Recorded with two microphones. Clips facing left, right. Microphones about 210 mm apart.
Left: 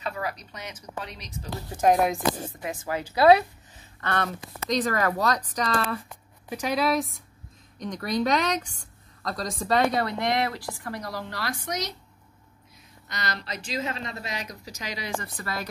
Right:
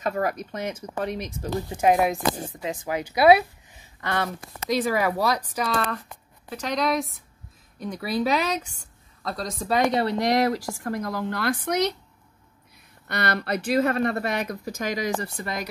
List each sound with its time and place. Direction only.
0.0 s a woman's voice: 45° right (ahead or behind)
1.9 s speech: 5° right (ahead or behind)
2.6 s a woman's voice: 15° right (ahead or behind); by 9.8 s centre (ahead or behind)
9.9 s a woman's voice: 35° right (ahead or behind); by 11.9 s 55° right (ahead or behind)
13.1 s speech: 60° right (ahead or behind); by 15.3 s 35° right (ahead or behind)
15.3 s speech: 20° right (ahead or behind)